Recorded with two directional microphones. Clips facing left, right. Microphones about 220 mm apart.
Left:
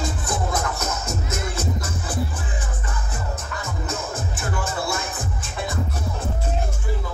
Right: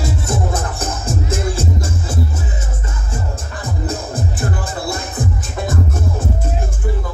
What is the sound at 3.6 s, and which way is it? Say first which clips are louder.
Music: right 7 dB; 35° right (ahead or behind).